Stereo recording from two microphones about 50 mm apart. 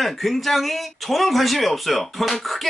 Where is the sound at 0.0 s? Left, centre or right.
Centre.